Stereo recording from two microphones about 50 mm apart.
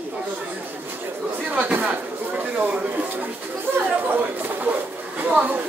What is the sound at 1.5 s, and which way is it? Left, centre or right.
Speech, right.